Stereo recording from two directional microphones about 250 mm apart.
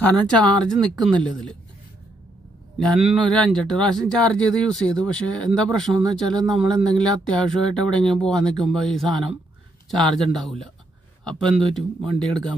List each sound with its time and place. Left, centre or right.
0.0 s speech: centre
2.8 s speech: centre